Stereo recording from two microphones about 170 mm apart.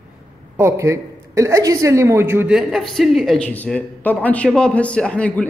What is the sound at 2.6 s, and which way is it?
A man's voice, centre (ahead or behind).